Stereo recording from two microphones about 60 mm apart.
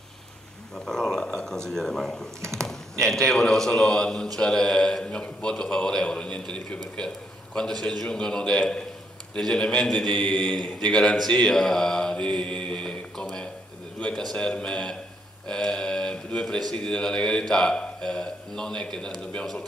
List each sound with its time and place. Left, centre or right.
0.7 s speech: centre
11.6 s mantra: centre
13.9 s speech: centre